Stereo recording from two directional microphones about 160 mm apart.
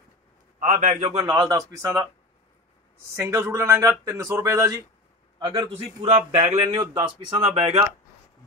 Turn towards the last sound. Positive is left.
turn(degrees=-35)  # may be behind; listen again after turning